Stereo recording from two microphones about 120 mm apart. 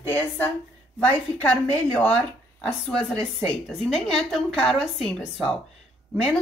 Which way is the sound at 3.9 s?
5° left (ahead or behind).